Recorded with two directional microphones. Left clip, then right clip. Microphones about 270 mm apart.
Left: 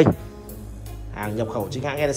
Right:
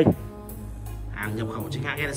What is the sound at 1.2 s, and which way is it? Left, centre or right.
Speech, centre.